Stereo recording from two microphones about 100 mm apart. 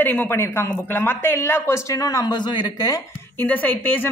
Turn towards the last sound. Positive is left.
turn(degrees=15)  # may be behind; listen again after turning